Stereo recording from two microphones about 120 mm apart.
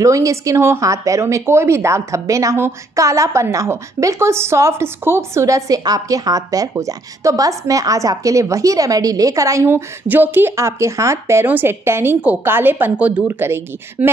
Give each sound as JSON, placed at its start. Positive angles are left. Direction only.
{"t": 0.0, "sound": "speech", "side_deg": -25}